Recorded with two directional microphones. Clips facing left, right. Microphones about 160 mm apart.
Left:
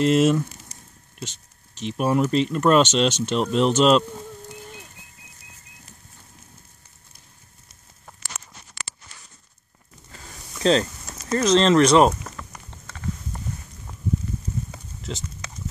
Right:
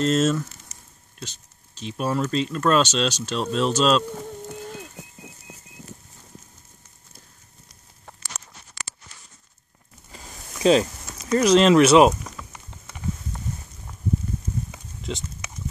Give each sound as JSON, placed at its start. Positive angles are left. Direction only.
{"t": 0.0, "sound": "speech", "side_deg": 10}
{"t": 0.7, "sound": "a sound", "side_deg": 35}
{"t": 2.0, "sound": "speech", "side_deg": 10}
{"t": 10.1, "sound": "a sound", "side_deg": -10}
{"t": 11.3, "sound": "speech", "side_deg": -10}
{"t": 15.1, "sound": "speech", "side_deg": 0}